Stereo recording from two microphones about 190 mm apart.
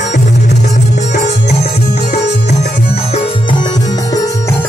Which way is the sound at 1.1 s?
60° left (ahead or behind).